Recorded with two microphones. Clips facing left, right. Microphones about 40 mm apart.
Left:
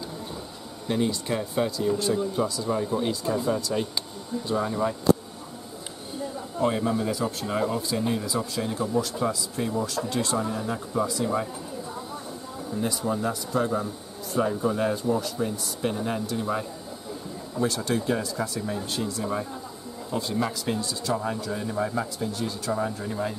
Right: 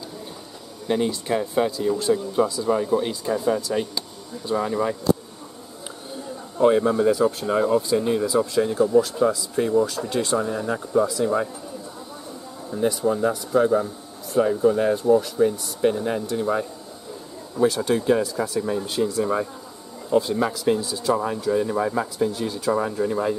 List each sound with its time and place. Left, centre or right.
0.8 s speech: centre
6.6 s speech: centre
8.6 s speech: centre
12.7 s speech: centre